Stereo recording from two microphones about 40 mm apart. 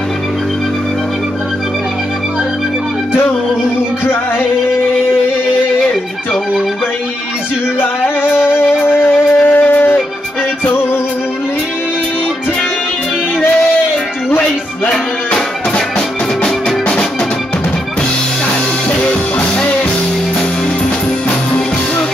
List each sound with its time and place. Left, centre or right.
4.0 s music: left
7.8 s music: left
8.9 s wind instrument: left
18.9 s music: left